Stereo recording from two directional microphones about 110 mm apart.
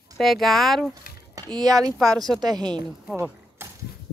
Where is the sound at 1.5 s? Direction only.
35° right (ahead or behind).